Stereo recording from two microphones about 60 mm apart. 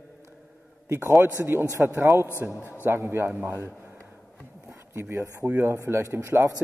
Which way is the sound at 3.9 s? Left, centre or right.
Right.